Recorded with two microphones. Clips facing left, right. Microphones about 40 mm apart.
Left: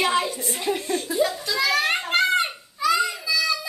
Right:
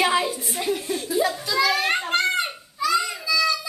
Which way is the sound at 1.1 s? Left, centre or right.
Centre.